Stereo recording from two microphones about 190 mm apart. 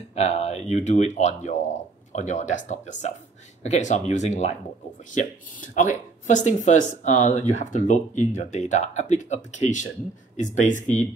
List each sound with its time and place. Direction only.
0.1 s speech: 35° left (ahead or behind)